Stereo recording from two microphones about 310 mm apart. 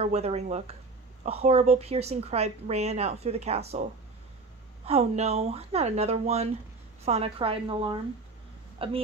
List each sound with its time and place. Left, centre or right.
0.0 s speech: centre